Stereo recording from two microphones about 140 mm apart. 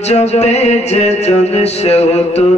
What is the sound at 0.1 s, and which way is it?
Mantra, 50° left (ahead or behind).